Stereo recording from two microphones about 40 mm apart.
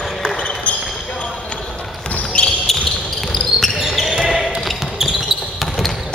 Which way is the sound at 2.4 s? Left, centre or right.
Centre.